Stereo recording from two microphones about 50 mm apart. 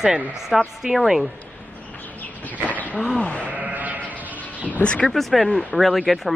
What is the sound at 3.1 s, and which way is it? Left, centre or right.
Speech, left.